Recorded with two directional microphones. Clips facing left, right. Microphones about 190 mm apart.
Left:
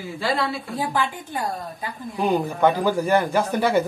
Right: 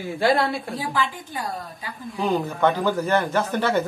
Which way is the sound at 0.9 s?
50° left (ahead or behind).